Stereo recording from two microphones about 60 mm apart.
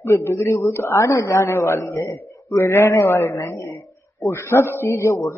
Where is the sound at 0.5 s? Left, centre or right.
Left.